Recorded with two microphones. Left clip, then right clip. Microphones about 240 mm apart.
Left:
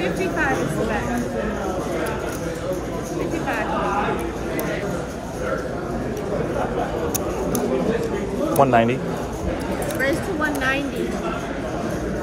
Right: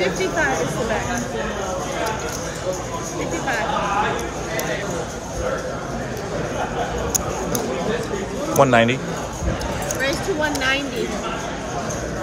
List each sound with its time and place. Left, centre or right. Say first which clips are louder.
8.5 s speech: right 2 dB; right